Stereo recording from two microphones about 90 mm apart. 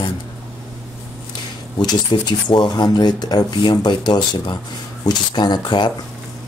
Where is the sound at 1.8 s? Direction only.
50° left (ahead or behind).